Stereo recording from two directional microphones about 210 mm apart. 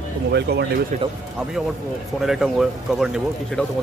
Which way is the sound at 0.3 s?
50° right (ahead or behind).